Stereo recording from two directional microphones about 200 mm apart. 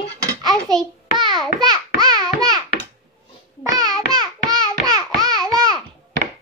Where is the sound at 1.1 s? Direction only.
20° right (ahead or behind).